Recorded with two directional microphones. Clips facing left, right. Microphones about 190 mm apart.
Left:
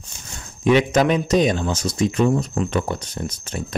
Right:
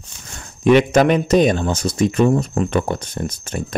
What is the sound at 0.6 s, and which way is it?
Speech, 60° right (ahead or behind).